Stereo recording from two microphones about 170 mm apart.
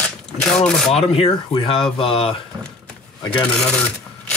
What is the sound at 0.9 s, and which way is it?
Speech, 35° left (ahead or behind).